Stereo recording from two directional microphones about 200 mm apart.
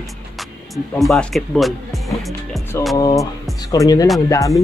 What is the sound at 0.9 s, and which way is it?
Speech, centre (ahead or behind).